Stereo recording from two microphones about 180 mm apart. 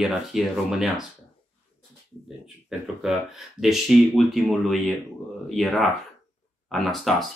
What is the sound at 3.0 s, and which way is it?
Speech, centre (ahead or behind).